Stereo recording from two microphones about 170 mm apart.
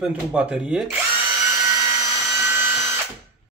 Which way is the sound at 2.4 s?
15° right (ahead or behind).